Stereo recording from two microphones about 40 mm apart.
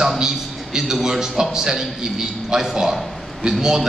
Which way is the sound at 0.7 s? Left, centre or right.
Centre.